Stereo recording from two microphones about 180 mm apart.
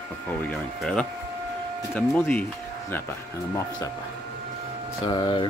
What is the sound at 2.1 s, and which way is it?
Speech, 10° left (ahead or behind).